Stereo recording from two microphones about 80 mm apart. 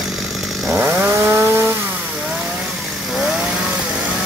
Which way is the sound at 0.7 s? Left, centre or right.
Right.